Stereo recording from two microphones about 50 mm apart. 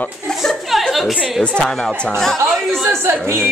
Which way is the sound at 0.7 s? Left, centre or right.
Centre.